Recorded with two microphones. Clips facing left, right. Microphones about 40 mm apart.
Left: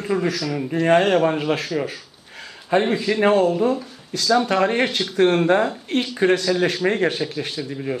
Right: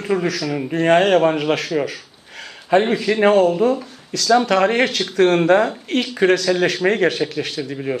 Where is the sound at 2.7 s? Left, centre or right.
Centre.